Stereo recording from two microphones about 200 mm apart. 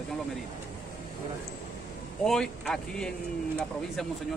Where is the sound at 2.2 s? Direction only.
Centre (ahead or behind).